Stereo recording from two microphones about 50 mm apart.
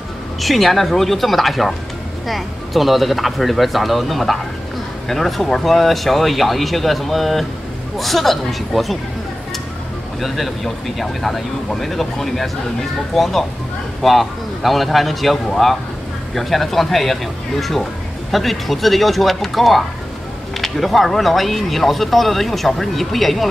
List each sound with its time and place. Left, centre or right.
0.4 s speech: centre
10.2 s speech: centre